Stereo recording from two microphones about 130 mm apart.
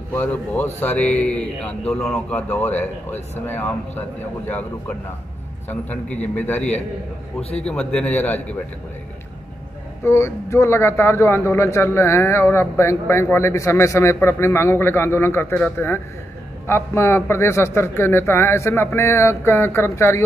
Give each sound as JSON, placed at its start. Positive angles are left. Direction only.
{"t": 0.1, "sound": "a man's voice", "side_deg": 15}
{"t": 7.9, "sound": "a man's voice", "side_deg": 10}
{"t": 10.0, "sound": "speech", "side_deg": 20}